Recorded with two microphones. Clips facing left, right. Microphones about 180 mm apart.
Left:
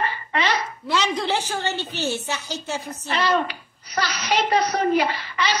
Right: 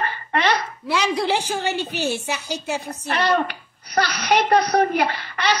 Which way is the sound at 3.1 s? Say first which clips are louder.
Right 1 dB; 55° right (ahead or behind).